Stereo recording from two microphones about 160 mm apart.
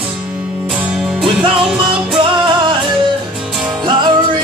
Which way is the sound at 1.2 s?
30° right (ahead or behind).